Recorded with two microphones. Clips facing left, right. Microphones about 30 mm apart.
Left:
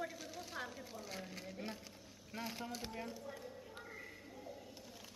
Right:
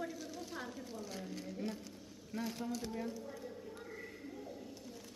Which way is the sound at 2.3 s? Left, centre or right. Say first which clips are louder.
Right 4 dB; centre.